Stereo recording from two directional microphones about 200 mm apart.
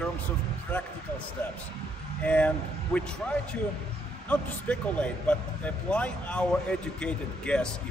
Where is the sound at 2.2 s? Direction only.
5° left (ahead or behind).